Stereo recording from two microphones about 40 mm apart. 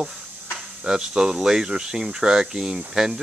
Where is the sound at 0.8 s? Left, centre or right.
Centre.